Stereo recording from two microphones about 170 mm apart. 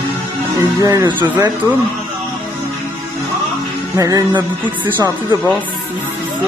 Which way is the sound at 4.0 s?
20° right (ahead or behind).